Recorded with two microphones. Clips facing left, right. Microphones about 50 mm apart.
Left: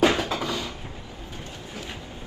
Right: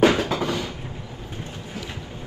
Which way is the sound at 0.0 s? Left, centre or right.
Right.